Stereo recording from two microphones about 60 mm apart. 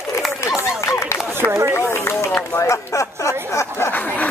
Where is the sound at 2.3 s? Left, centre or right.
Left.